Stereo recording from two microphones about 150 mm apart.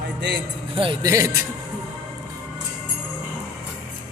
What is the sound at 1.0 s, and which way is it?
Speech, 20° right (ahead or behind).